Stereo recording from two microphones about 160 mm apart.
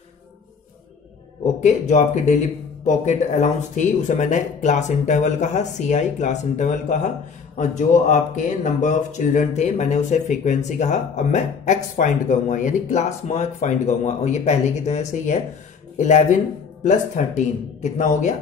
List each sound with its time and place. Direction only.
1.4 s speech: 45° left (ahead or behind)